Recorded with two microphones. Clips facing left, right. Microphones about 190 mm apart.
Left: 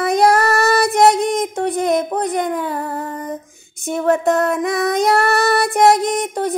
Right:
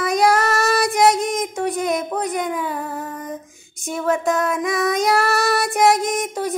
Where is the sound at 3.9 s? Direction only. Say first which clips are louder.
Left 4 dB; 60° left (ahead or behind).